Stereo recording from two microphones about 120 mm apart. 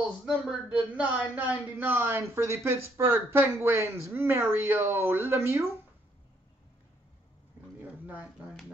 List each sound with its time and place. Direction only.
0.2 s speech: 5° right (ahead or behind)